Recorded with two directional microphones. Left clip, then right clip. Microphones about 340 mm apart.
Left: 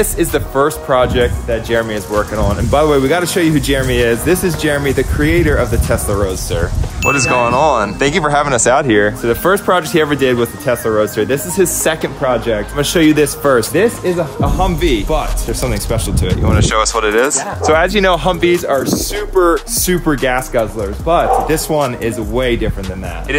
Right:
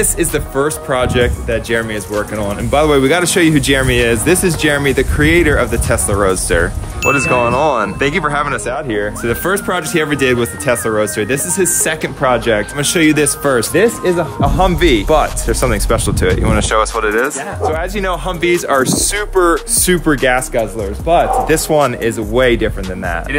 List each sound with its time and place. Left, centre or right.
0.0 s speech: centre
8.6 s speech: left
9.2 s speech: centre
17.6 s speech: left; by 22.7 s centre